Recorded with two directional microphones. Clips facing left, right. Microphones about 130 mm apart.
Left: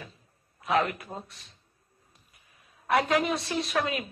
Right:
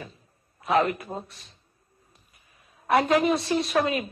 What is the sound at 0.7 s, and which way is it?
Speech, 30° right (ahead or behind).